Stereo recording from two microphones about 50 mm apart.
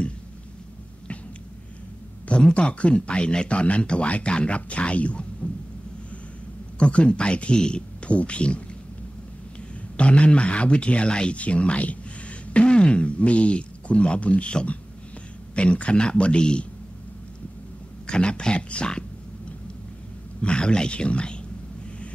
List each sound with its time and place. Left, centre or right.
2.2 s speech: left
5.4 s a sound: left
6.8 s speech: left
9.9 s speech: left
18.0 s speech: centre
20.4 s speech: centre